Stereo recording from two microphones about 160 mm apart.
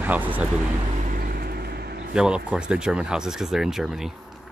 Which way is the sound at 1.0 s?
60° right (ahead or behind).